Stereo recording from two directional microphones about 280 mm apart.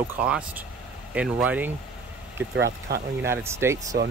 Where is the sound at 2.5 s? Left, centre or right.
Right.